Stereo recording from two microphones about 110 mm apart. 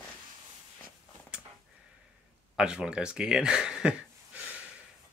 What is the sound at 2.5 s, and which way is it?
Speech, 5° right (ahead or behind).